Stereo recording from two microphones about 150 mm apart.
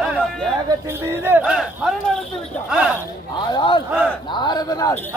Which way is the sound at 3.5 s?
30° left (ahead or behind).